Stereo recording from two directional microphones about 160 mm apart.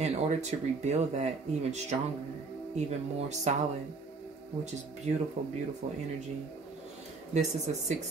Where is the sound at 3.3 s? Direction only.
45° right (ahead or behind).